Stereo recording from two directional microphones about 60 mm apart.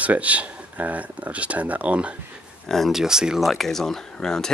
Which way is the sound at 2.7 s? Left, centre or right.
Centre.